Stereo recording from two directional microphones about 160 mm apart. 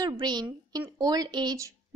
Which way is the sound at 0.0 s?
25° right (ahead or behind).